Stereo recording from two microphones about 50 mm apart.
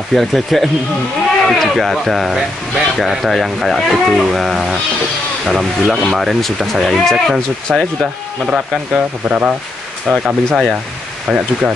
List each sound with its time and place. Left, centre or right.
0.1 s speech: centre
8.5 s speech: centre